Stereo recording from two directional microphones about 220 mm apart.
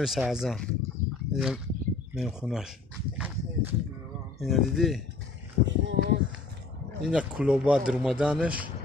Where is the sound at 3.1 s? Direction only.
5° right (ahead or behind).